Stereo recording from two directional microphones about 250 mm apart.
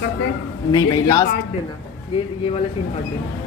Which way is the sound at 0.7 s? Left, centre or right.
Centre.